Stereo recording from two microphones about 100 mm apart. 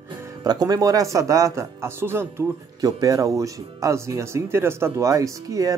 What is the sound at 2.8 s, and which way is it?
Speech, 40° right (ahead or behind).